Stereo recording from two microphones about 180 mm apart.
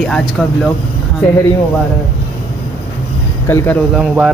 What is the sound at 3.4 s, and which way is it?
Speech, 15° left (ahead or behind).